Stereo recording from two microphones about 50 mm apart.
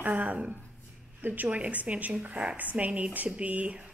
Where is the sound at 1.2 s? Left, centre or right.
Right.